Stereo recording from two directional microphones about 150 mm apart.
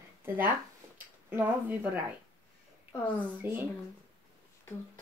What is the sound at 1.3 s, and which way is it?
Speech, 15° right (ahead or behind).